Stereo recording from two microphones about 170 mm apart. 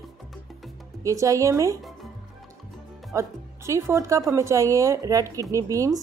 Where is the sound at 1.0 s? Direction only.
20° right (ahead or behind).